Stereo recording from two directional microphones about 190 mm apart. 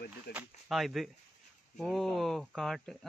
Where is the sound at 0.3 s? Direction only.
5° right (ahead or behind).